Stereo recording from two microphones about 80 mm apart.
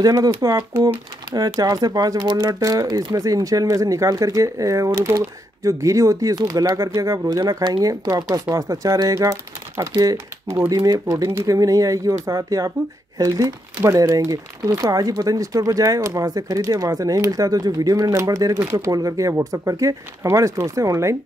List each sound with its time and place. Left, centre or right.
0.0 s speech: right
0.8 s speech: right
3.2 s speech: right
13.8 s speech: right